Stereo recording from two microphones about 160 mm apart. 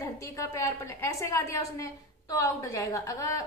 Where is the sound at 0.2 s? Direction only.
15° left (ahead or behind).